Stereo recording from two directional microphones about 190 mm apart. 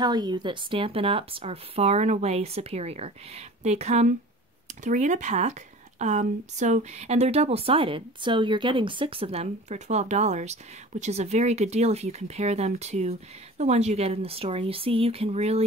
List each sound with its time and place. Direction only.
0.0 s a woman's voice: 20° right (ahead or behind)